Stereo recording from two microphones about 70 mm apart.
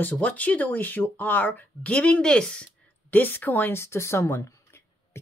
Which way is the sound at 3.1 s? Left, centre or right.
Left.